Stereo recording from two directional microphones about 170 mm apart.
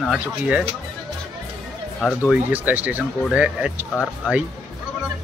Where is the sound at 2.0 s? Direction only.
5° left (ahead or behind).